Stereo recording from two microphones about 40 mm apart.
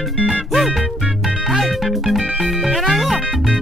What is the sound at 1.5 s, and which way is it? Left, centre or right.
Music, centre.